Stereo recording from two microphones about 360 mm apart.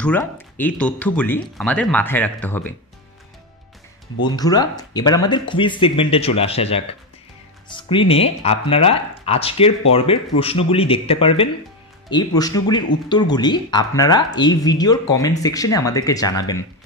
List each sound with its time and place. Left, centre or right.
0.0 s speech: centre
4.2 s speech: centre